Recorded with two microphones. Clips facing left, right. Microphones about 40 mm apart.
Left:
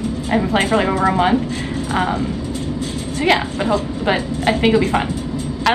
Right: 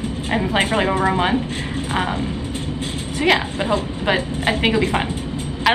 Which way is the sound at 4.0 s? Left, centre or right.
Centre.